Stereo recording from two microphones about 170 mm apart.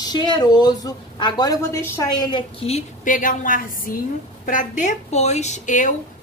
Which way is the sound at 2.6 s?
45° left (ahead or behind).